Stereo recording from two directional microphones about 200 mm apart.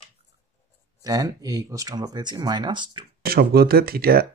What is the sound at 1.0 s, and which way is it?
Speech, 20° right (ahead or behind).